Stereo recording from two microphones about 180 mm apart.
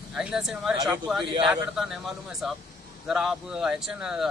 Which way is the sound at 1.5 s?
Centre (ahead or behind).